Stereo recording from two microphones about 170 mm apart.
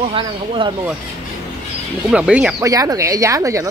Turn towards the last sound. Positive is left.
turn(degrees=-20)  # may be behind; listen again after turning